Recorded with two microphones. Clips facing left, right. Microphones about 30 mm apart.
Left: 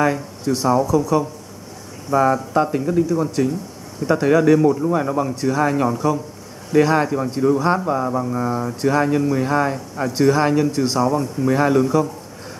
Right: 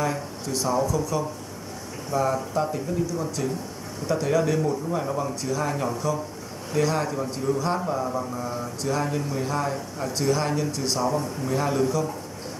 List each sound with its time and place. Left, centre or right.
0.0 s speech: left
2.0 s speech: left
11.1 s speech: left